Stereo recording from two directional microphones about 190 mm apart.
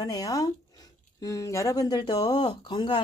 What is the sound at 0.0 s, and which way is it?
Speech, 20° left (ahead or behind).